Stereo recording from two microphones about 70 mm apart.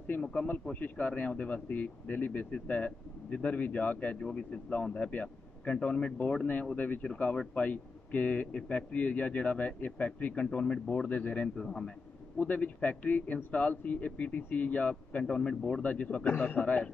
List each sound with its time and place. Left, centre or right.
0.0 s a man's voice: left
12.4 s a man's voice: left